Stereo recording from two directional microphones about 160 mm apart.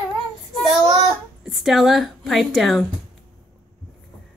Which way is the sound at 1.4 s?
Centre (ahead or behind).